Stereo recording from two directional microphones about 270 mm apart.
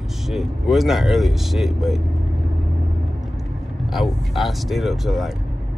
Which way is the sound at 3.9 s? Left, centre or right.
Centre.